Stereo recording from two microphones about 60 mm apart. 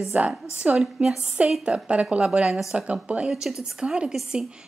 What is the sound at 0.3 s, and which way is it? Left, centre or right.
A woman's voice, centre.